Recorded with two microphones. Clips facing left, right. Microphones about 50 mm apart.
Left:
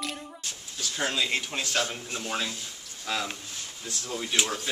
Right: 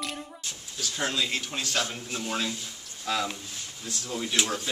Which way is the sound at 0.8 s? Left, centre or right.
Centre.